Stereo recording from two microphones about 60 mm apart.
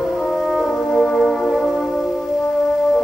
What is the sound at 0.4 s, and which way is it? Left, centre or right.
Music, centre.